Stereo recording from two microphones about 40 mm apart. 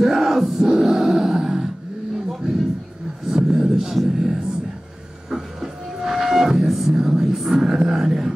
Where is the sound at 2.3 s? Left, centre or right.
Centre.